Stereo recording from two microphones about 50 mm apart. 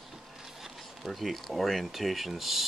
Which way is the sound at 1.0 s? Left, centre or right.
Centre.